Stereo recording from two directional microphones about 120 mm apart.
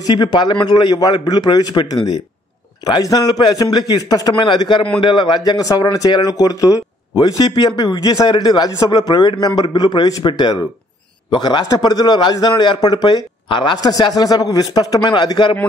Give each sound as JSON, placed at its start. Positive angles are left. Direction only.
{"t": 0.0, "sound": "a man's voice", "side_deg": 35}
{"t": 13.7, "sound": "a man's voice", "side_deg": 30}